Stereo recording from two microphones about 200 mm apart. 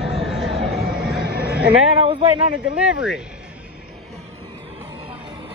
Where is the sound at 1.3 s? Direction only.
50° right (ahead or behind).